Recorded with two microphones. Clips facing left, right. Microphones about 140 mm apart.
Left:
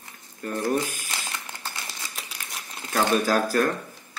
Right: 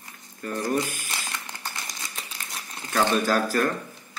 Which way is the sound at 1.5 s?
15° right (ahead or behind).